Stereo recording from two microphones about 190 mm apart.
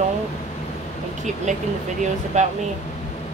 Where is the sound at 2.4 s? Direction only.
40° right (ahead or behind).